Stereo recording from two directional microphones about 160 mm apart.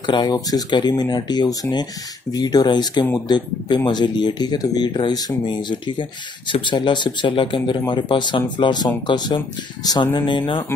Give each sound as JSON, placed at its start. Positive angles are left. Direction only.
{"t": 0.0, "sound": "speech", "side_deg": 25}